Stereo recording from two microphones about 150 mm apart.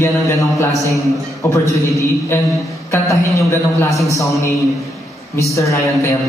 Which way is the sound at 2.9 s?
20° left (ahead or behind).